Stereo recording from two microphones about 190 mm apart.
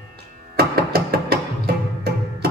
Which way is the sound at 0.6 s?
55° right (ahead or behind).